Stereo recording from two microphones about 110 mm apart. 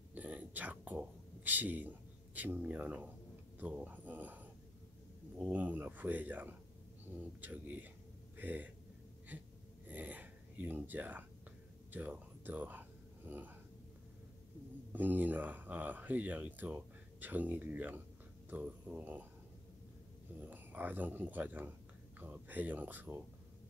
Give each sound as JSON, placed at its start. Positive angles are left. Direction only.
{"t": 0.1, "sound": "a sound", "side_deg": -15}
{"t": 2.3, "sound": "speech", "side_deg": -15}
{"t": 9.8, "sound": "a sound", "side_deg": -15}
{"t": 11.9, "sound": "speech", "side_deg": -15}
{"t": 14.9, "sound": "speech", "side_deg": -15}
{"t": 20.3, "sound": "speech", "side_deg": -15}